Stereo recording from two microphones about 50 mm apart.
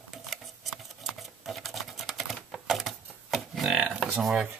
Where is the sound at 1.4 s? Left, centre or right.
Centre.